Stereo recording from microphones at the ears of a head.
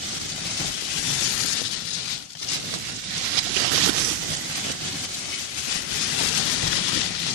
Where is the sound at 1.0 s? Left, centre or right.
Left.